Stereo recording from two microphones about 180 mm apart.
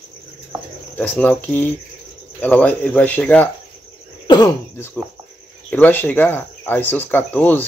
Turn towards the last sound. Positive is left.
turn(degrees=10)  # may be behind; listen again after turning